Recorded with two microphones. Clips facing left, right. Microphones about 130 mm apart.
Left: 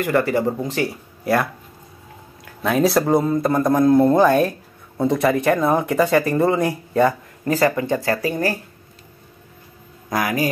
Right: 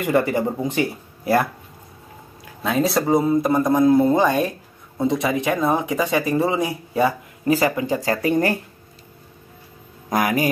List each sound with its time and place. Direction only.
0.0 s speech: 15° right (ahead or behind)
2.6 s speech: centre (ahead or behind)
7.7 s speech: 20° right (ahead or behind)
10.0 s speech: 20° right (ahead or behind)